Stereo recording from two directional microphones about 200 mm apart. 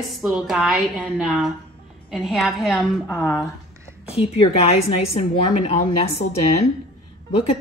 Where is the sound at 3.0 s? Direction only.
10° left (ahead or behind).